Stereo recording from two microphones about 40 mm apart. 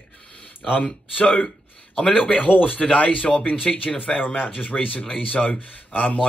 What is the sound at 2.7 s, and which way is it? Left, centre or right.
Speech, left.